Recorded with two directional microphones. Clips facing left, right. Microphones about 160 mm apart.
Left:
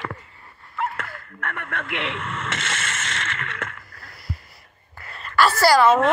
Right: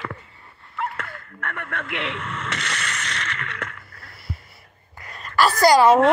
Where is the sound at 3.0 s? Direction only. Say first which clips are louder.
Even; 45° left (ahead or behind).